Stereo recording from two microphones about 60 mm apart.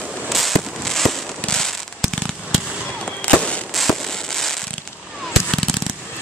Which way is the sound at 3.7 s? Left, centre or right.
Centre.